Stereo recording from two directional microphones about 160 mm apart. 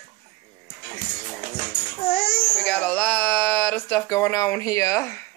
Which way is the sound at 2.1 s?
40° left (ahead or behind).